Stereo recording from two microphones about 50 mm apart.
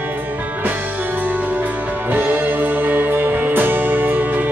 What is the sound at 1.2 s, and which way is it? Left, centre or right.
Music, right.